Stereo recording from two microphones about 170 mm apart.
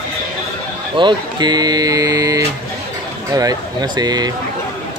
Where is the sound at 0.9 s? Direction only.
25° right (ahead or behind).